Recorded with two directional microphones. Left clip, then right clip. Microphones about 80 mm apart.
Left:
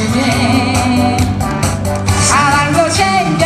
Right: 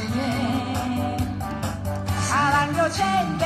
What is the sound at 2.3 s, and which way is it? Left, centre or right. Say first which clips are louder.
Music: left 9 dB; left.